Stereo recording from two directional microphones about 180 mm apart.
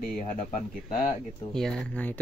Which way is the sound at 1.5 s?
5° left (ahead or behind).